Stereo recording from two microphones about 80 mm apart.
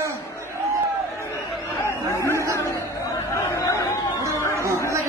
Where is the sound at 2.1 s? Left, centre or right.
Left.